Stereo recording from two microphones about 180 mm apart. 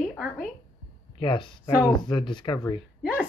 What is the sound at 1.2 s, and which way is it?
Speech, 25° left (ahead or behind).